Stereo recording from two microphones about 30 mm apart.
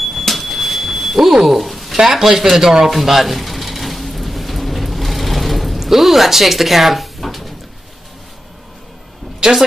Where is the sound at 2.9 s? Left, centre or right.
Centre.